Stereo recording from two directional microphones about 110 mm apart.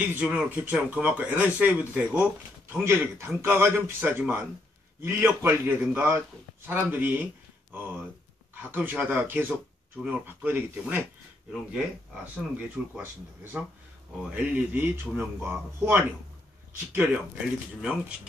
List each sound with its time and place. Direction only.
0.0 s a man's voice: 15° right (ahead or behind)
8.6 s speech: 15° right (ahead or behind)
12.7 s speech: 15° right (ahead or behind)